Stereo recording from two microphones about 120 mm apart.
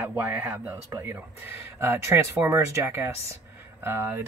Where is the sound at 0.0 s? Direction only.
15° right (ahead or behind).